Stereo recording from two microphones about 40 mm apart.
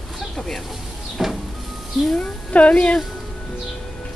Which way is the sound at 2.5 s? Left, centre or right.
Left.